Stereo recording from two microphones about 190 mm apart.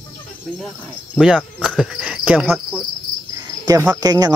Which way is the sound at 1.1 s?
5° right (ahead or behind).